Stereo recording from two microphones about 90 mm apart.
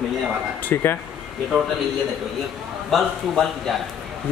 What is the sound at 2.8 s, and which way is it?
Speech, 5° left (ahead or behind).